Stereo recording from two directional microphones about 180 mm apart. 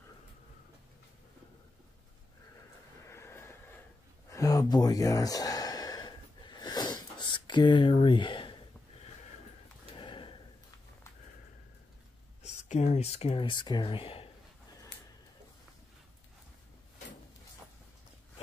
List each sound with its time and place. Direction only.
3.1 s vehicle: 15° left (ahead or behind)
4.3 s sigh: 20° left (ahead or behind)
9.9 s a sound: 30° left (ahead or behind)
12.4 s speech: 40° left (ahead or behind)